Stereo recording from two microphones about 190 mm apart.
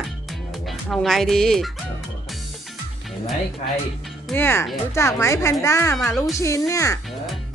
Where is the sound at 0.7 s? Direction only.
Centre (ahead or behind).